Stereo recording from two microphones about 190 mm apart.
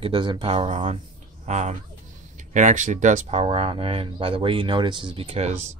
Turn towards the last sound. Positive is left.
turn(degrees=-35)  # may be behind; listen again after turning